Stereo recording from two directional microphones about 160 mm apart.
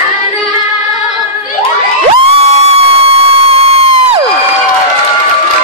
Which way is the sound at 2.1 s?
35° right (ahead or behind).